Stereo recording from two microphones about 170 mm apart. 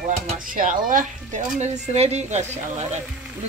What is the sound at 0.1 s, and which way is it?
Speech, 50° right (ahead or behind).